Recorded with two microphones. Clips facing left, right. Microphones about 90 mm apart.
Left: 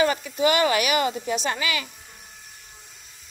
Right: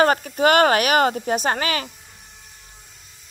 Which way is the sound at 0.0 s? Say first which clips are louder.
Right 4 dB; 50° right (ahead or behind).